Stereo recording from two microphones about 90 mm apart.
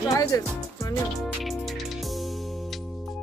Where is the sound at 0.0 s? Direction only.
40° left (ahead or behind).